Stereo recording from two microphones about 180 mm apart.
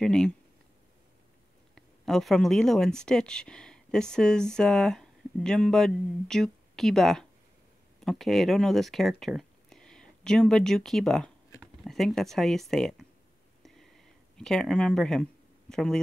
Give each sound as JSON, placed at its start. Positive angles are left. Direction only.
{"t": 0.0, "sound": "speech", "side_deg": 5}
{"t": 1.8, "sound": "speech", "side_deg": 0}
{"t": 13.6, "sound": "a sound", "side_deg": 0}
{"t": 15.7, "sound": "speech", "side_deg": 5}